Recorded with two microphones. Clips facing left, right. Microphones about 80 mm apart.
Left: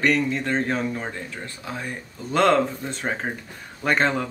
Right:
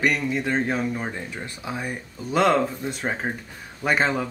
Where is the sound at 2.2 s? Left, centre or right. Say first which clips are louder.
Left 1 dB; centre.